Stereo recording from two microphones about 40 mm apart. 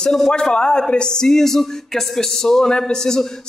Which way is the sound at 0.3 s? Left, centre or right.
Centre.